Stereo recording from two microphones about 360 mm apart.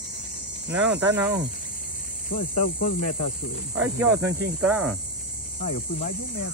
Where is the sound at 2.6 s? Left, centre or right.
Left.